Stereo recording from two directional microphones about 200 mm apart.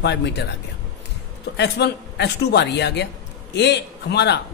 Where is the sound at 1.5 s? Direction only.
60° left (ahead or behind).